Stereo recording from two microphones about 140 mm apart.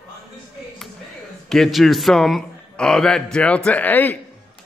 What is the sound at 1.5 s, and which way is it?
A man's voice, centre (ahead or behind).